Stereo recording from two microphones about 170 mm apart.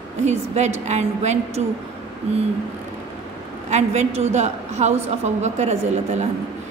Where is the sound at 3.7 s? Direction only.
40° right (ahead or behind).